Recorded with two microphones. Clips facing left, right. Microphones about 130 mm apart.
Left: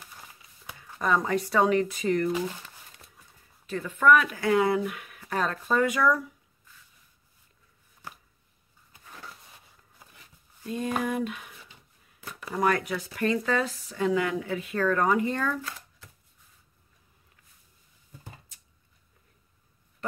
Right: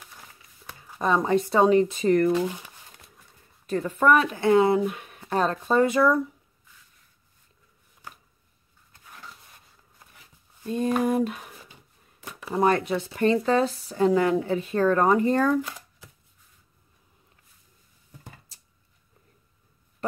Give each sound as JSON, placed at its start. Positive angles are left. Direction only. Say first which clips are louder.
{"t": 0.9, "sound": "speech", "louder": "right 3 dB", "side_deg": -25}
{"t": 2.0, "sound": "speech", "louder": "right 6 dB", "side_deg": -50}
{"t": 3.6, "sound": "speech", "louder": "right 1 dB", "side_deg": -35}
{"t": 9.0, "sound": "a sound", "louder": "even", "side_deg": 0}
{"t": 11.0, "sound": "speech", "louder": "right 5 dB", "side_deg": -35}
{"t": 12.5, "sound": "speech", "louder": "right 4 dB", "side_deg": -25}